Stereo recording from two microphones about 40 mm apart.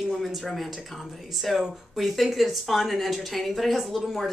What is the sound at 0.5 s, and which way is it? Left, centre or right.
A woman's voice, centre.